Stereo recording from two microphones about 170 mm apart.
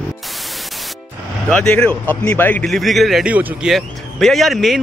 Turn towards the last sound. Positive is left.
turn(degrees=0)  # may be behind; listen again after turning